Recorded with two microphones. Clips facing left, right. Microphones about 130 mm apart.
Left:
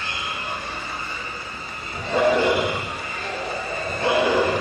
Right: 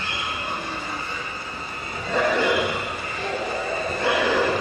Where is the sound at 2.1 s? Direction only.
25° left (ahead or behind).